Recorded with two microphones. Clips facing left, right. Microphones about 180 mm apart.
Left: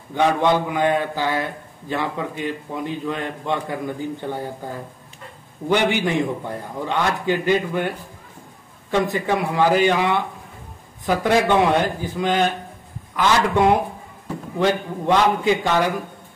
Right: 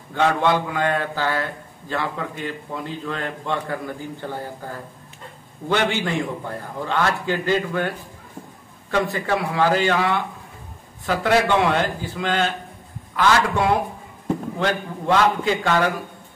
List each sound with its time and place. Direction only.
0.1 s a man's voice: 15° left (ahead or behind)
9.0 s a man's voice: 20° left (ahead or behind)